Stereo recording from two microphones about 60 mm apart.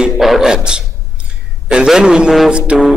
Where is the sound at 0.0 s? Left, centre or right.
Centre.